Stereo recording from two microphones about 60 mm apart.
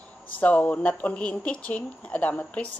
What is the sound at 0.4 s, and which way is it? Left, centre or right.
Speech, left.